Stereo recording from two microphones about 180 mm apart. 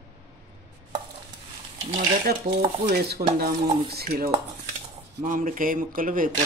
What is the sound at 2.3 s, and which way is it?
A woman's voice, 60° right (ahead or behind).